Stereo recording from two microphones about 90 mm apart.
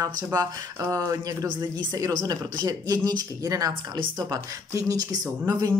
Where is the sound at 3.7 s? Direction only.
65° right (ahead or behind).